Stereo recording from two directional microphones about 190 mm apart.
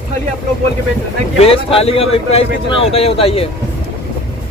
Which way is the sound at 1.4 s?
30° left (ahead or behind).